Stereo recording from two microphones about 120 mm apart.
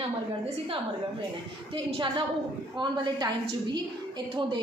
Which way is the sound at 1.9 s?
45° right (ahead or behind).